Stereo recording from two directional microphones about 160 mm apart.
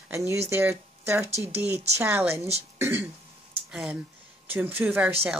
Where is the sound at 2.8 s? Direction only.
15° right (ahead or behind).